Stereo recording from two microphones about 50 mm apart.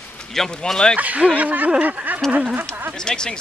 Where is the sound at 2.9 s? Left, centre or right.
Centre.